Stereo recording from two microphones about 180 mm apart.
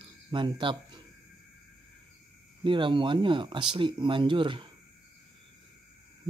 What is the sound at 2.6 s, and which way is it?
Speech, 25° right (ahead or behind).